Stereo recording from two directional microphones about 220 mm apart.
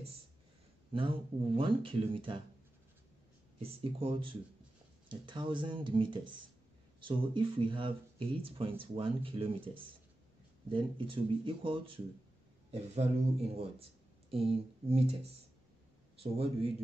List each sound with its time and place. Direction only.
0.9 s speech: 25° right (ahead or behind)
4.0 s speech: 25° right (ahead or behind)